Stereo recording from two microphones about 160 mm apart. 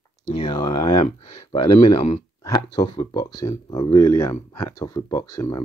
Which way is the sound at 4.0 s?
20° left (ahead or behind).